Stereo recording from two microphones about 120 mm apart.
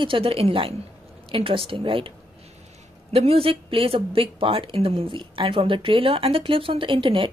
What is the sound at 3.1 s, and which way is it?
Speech, 55° right (ahead or behind).